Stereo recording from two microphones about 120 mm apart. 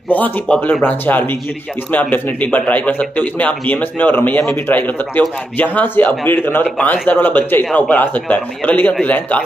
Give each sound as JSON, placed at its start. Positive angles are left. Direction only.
{"t": 0.1, "sound": "speech", "side_deg": 15}